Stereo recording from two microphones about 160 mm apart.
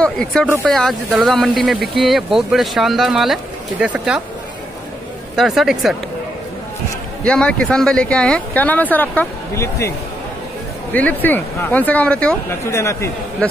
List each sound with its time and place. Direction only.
0.0 s speech: 5° left (ahead or behind)
5.3 s speech: centre (ahead or behind)
7.2 s speech: 5° left (ahead or behind)